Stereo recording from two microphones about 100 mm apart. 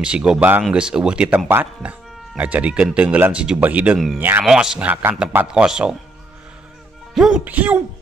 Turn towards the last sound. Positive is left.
turn(degrees=-15)  # may be behind; listen again after turning